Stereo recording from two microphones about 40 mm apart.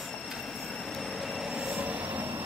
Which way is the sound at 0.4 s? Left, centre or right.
Centre.